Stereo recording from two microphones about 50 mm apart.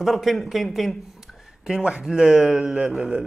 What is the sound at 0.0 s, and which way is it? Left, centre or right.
Speech, centre.